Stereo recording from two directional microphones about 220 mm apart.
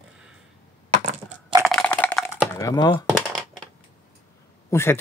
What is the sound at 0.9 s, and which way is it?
Crushing, 30° right (ahead or behind).